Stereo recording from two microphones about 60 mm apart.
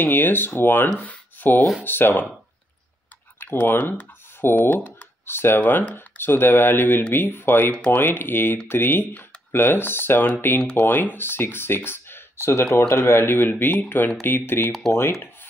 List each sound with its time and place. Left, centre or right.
0.0 s speech: left
0.9 s a sound: left
1.9 s speech: left
3.3 s typing: left
4.6 s speech: left
10.6 s speech: centre
11.1 s speech: left